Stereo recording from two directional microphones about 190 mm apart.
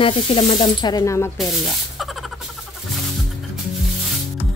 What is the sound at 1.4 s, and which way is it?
Speech, centre (ahead or behind).